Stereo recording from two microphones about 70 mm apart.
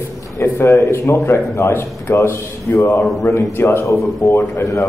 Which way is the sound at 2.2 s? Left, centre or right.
Left.